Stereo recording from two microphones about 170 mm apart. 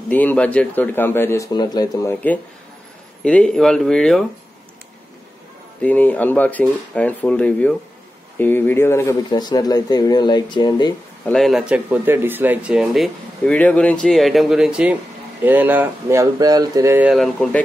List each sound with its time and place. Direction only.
0.1 s a man's voice: 10° left (ahead or behind)
3.3 s speech: 5° left (ahead or behind)
5.8 s a man's voice: 10° left (ahead or behind)
11.2 s speech: centre (ahead or behind); by 17.1 s 15° right (ahead or behind)
17.1 s speech: centre (ahead or behind)